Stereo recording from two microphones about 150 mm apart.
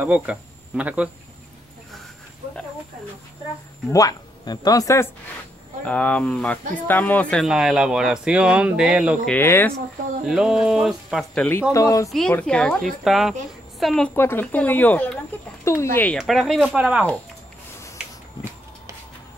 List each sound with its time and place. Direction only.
0.0 s speech: 10° right (ahead or behind)
3.9 s speech: 25° left (ahead or behind)
5.9 s speech: 10° left (ahead or behind)
7.4 s a woman's voice: 5° right (ahead or behind)
9.3 s speech: 15° left (ahead or behind)
10.2 s a woman's voice: 5° right (ahead or behind)
11.7 s speech: 20° left (ahead or behind)
12.1 s a woman's voice: 5° left (ahead or behind)
14.1 s speech: 15° left (ahead or behind)
16.2 s a woman's voice: centre (ahead or behind)
18.0 s a sound: 5° right (ahead or behind)